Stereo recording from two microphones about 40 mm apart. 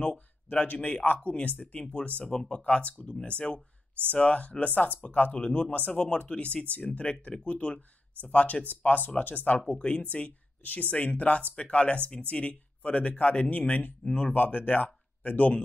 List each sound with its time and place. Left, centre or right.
0.0 s a sound: left
0.8 s speech: left
1.8 s speech: left
2.3 s speech: left
5.9 s speech: left
8.6 s speech: left
9.7 s speech: left